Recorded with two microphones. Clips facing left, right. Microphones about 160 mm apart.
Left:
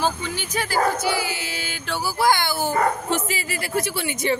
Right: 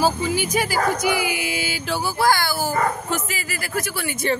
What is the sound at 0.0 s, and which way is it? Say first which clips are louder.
Speech: right 5 dB; 10° right (ahead or behind).